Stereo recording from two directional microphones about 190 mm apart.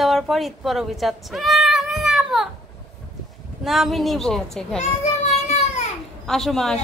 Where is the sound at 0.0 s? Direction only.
Centre (ahead or behind).